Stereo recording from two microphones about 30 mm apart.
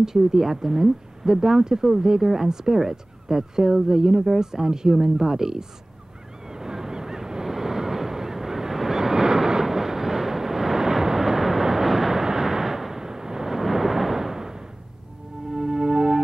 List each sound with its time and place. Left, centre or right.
0.0 s speech: centre
6.5 s honk: centre
15.5 s music: right